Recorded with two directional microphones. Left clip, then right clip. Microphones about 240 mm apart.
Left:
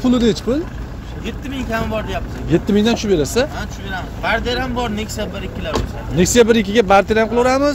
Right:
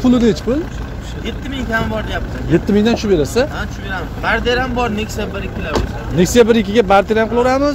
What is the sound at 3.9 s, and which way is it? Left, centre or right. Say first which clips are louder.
Speech: right 2 dB; left.